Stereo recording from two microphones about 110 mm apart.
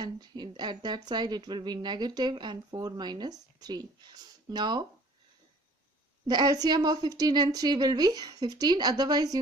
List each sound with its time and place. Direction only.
0.0 s speech: 40° right (ahead or behind)
6.2 s speech: 40° right (ahead or behind)